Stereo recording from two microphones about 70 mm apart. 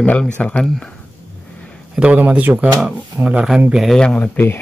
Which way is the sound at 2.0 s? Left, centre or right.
Centre.